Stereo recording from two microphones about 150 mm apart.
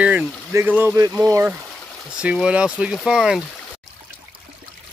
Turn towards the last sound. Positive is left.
turn(degrees=-5)  # may be behind; listen again after turning